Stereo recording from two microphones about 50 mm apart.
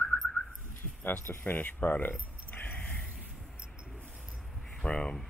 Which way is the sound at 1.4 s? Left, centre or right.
Left.